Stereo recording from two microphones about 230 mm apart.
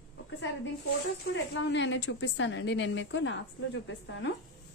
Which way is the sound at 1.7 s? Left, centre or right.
Left.